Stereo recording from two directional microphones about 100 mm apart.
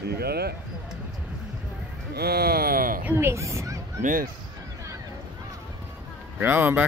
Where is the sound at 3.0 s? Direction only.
25° right (ahead or behind).